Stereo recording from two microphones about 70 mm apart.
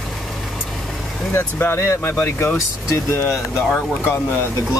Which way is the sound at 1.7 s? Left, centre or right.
Left.